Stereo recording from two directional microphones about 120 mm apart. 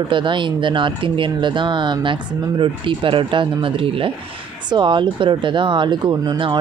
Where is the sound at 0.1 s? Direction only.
40° right (ahead or behind).